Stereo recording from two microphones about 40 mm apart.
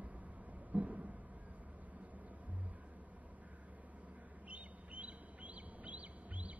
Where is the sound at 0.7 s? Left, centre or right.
Right.